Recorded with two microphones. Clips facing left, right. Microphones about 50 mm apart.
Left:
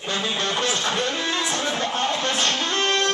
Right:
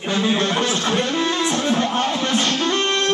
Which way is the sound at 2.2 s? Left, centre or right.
Right.